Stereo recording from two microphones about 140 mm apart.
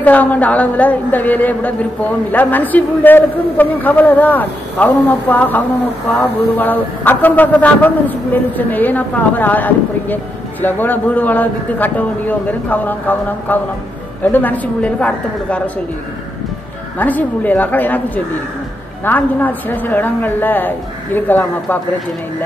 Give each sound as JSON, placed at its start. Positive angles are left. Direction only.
{"t": 0.0, "sound": "a man's voice", "side_deg": 10}
{"t": 17.0, "sound": "a man's voice", "side_deg": 10}